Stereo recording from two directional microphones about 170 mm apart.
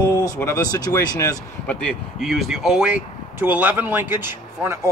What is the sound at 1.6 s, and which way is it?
Speech, 5° left (ahead or behind).